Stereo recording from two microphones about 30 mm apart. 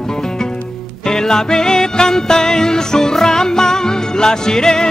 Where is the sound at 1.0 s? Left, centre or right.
Left.